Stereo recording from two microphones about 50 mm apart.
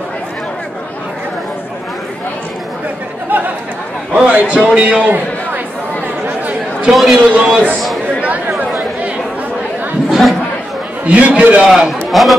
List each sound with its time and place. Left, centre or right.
3.3 s a sound: right
4.2 s a man's voice: right
6.9 s a man's voice: centre
7.3 s a man's voice: centre
8.2 s chatter: right
10.0 s chatter: centre
11.1 s a man's voice: right
11.6 s a man's voice: centre
12.1 s speech: centre